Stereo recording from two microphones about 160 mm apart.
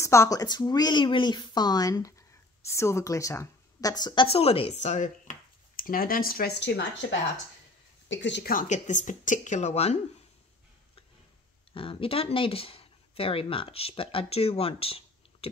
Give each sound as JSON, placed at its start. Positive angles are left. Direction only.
{"t": 0.0, "sound": "speech", "side_deg": 20}
{"t": 8.3, "sound": "a woman's voice", "side_deg": 80}
{"t": 8.6, "sound": "speech", "side_deg": 50}
{"t": 11.7, "sound": "speech", "side_deg": 35}